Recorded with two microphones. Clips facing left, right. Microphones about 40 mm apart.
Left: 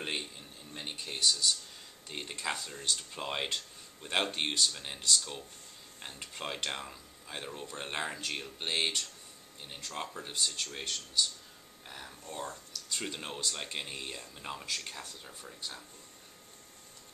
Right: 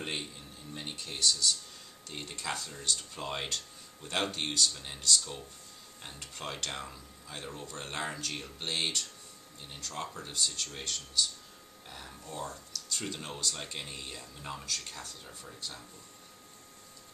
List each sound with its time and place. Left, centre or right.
0.7 s speech: centre
4.9 s speech: centre
12.3 s speech: left
12.7 s speech: centre